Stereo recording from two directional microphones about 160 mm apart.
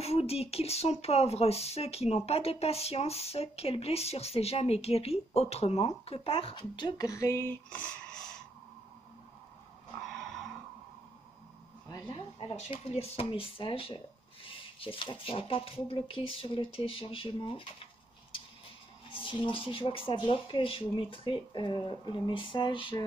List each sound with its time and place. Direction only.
0.0 s speech: 40° left (ahead or behind); by 8.3 s 5° left (ahead or behind)
10.0 s a sound: centre (ahead or behind)
12.1 s speech: 35° left (ahead or behind)
19.0 s speech: 30° left (ahead or behind)